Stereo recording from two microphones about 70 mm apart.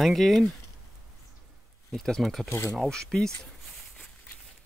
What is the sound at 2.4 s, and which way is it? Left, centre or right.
Speech, left.